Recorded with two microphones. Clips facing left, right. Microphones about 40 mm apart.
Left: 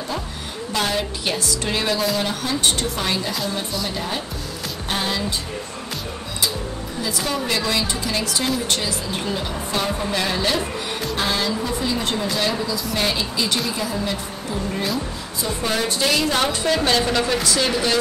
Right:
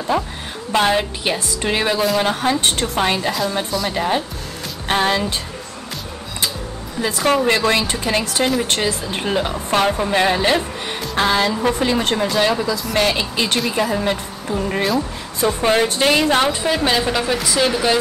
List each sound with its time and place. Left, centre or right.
0.1 s a woman's voice: right
2.6 s a woman's voice: right
4.8 s music: right
7.0 s a woman's voice: right
9.9 s a woman's voice: right
12.2 s a woman's voice: right
12.9 s a woman's voice: right
16.4 s a woman's voice: centre